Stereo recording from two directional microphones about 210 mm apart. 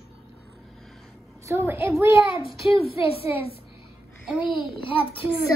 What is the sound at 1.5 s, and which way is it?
Speech, 10° right (ahead or behind).